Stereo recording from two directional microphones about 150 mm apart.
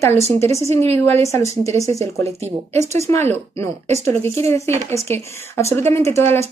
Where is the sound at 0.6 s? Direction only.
45° right (ahead or behind).